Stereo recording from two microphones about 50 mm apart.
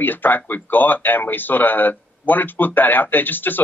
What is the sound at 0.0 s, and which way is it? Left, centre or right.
Speech, left.